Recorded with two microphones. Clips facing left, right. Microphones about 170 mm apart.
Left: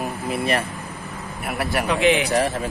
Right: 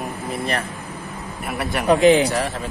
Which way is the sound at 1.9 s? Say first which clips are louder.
Right 6 dB; 40° right (ahead or behind).